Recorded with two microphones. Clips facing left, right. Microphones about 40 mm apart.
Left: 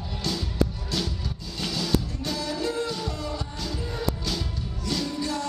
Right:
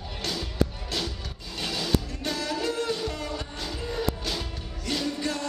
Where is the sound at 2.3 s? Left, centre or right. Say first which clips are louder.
Left 1 dB; right.